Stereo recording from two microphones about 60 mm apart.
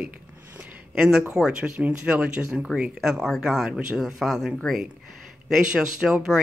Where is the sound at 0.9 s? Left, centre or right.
Centre.